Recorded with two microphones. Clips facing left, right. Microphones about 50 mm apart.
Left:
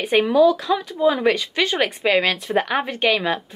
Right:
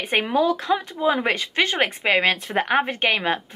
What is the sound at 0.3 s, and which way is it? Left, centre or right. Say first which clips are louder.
Speech: left 4 dB; right.